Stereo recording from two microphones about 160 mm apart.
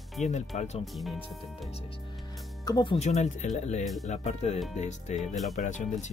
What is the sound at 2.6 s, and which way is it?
Speech, 25° left (ahead or behind).